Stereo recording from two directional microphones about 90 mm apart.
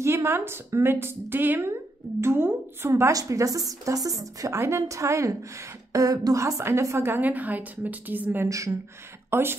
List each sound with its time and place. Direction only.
0.0 s a woman's voice: 30° right (ahead or behind)
2.9 s speech: 40° right (ahead or behind); by 8.5 s 20° right (ahead or behind)
8.5 s speech: 35° right (ahead or behind)
9.3 s a woman's voice: 25° right (ahead or behind)